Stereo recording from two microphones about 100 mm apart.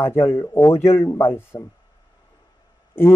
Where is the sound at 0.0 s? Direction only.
25° left (ahead or behind).